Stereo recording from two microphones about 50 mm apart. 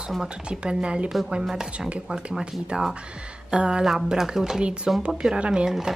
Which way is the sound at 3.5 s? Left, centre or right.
Centre.